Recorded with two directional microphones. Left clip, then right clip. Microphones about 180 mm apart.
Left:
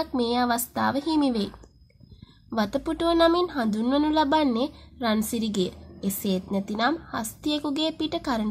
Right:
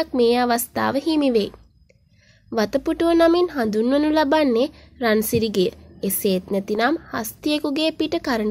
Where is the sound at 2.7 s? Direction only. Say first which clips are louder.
Right 5 dB; 20° right (ahead or behind).